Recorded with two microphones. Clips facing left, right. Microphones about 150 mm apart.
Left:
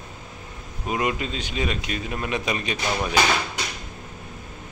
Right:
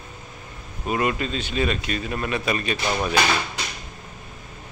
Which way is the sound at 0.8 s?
15° left (ahead or behind).